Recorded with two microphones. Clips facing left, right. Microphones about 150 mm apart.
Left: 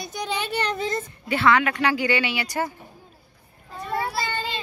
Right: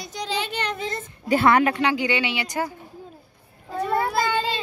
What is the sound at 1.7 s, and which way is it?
A child's voice, 20° right (ahead or behind).